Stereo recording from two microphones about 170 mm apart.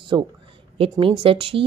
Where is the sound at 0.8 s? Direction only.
30° right (ahead or behind).